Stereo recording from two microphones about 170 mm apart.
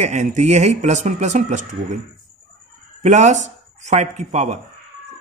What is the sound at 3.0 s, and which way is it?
Speech, 45° right (ahead or behind).